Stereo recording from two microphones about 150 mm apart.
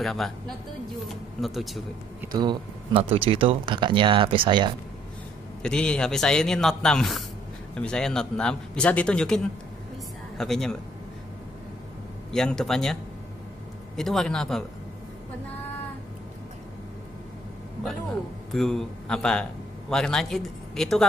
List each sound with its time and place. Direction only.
0.0 s speech: centre (ahead or behind)
1.4 s speech: centre (ahead or behind)
2.3 s speech: 30° right (ahead or behind)
5.6 s speech: 5° left (ahead or behind)
12.3 s speech: 5° left (ahead or behind)
13.9 s speech: centre (ahead or behind)
18.5 s a man's voice: centre (ahead or behind)